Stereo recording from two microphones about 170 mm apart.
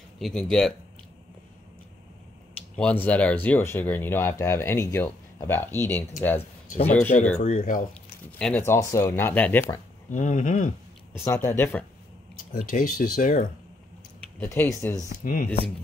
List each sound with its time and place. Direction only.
0.2 s speech: 5° left (ahead or behind)
2.5 s speech: 5° left (ahead or behind)
7.3 s speech: 45° left (ahead or behind)
7.9 s speech: 5° left (ahead or behind)
10.0 s speech: 45° left (ahead or behind)
11.3 s speech: 15° left (ahead or behind)
12.5 s speech: 55° left (ahead or behind)
14.4 s speech: 15° left (ahead or behind)
15.0 s speech: 60° left (ahead or behind)